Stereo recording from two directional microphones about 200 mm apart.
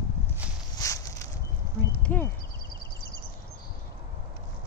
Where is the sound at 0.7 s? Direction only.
15° left (ahead or behind).